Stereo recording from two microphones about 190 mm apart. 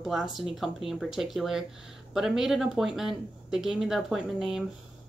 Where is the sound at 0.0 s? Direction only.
Centre (ahead or behind).